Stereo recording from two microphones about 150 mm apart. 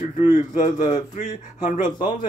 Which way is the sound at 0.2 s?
55° left (ahead or behind).